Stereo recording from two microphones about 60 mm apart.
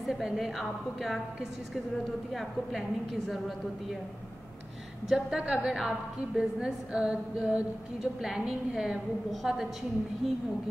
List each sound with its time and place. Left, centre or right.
0.0 s a woman's voice: centre
5.0 s a woman's voice: centre
5.4 s a woman's voice: centre